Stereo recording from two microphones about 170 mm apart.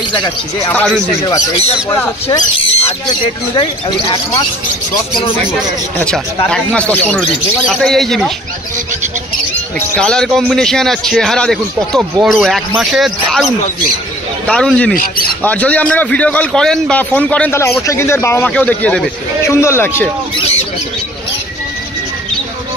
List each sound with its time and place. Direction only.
0.7 s a man's voice: 5° left (ahead or behind)
1.6 s speech: 35° left (ahead or behind)
5.9 s a man's voice: 5° left (ahead or behind)
9.8 s a man's voice: 5° left (ahead or behind)
15.0 s speech: 60° left (ahead or behind)
15.4 s a man's voice: 10° left (ahead or behind)
20.3 s a sound: 40° left (ahead or behind)